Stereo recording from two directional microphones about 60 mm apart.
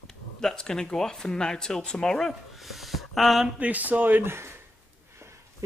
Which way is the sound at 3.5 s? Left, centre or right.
Right.